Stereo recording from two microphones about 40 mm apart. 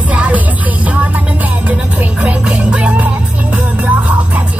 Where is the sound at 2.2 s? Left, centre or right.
Right.